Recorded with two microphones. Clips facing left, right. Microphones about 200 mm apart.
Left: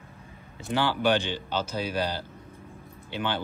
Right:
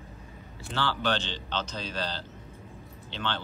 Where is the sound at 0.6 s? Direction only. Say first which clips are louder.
Left 5 dB; 15° left (ahead or behind).